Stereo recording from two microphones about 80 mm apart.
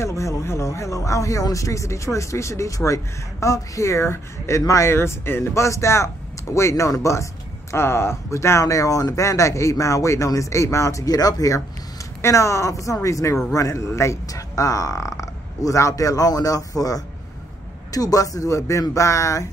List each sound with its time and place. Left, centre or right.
0.0 s speech: left